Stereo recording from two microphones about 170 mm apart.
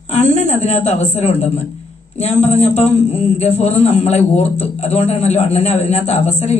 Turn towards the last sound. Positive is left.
turn(degrees=40)  # may be behind; listen again after turning